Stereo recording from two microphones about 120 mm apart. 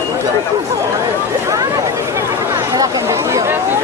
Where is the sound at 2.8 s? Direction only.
25° right (ahead or behind).